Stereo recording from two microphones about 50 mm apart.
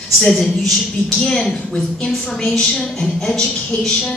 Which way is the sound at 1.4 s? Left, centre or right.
Centre.